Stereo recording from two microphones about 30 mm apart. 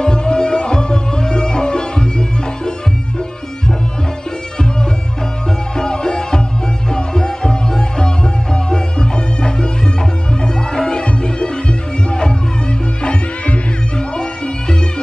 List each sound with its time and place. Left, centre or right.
0.0 s music: left
5.8 s music: left
13.9 s music: left